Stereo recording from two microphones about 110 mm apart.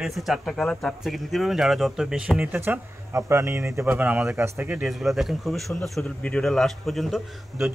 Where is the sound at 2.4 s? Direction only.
20° right (ahead or behind).